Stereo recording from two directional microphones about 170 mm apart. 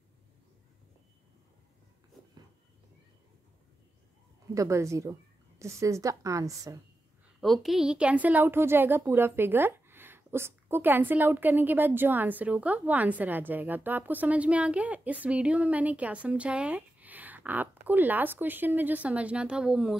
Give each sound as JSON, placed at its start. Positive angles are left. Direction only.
{"t": 4.6, "sound": "a woman's voice", "side_deg": -15}
{"t": 7.3, "sound": "a woman's voice", "side_deg": 0}